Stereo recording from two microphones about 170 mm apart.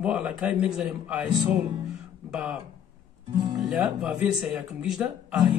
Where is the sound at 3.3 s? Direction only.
25° right (ahead or behind).